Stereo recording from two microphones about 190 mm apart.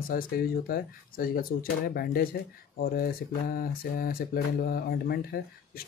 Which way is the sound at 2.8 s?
50° left (ahead or behind).